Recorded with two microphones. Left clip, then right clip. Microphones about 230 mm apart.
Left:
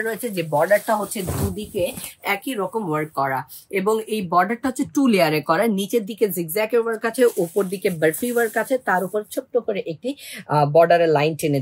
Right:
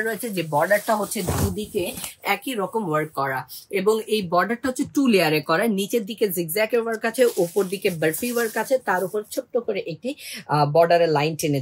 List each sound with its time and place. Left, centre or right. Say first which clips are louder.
0.0 s speech: left 1 dB; centre; by 11.2 s left